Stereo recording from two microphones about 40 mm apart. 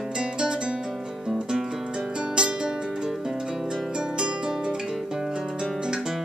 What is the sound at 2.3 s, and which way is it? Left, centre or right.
Music, right.